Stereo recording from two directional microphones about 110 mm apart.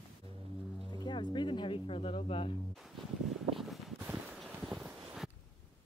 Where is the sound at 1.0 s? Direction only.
45° left (ahead or behind).